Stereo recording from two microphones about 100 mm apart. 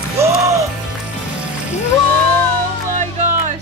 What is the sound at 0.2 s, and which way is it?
Music, 30° right (ahead or behind).